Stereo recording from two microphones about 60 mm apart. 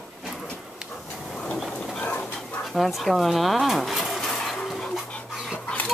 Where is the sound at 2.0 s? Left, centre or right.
Left.